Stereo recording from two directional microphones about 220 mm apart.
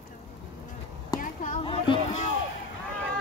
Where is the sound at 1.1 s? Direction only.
40° left (ahead or behind).